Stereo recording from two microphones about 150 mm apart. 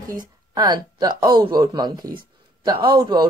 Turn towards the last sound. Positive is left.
turn(degrees=-30)  # may be behind; listen again after turning